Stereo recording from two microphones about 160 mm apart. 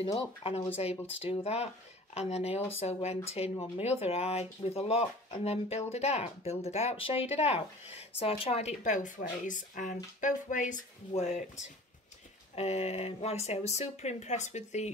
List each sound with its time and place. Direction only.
0.4 s speech: 45° left (ahead or behind)